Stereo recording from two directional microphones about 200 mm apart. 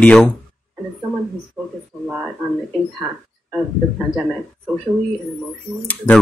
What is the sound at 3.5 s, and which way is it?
Speech, 5° right (ahead or behind).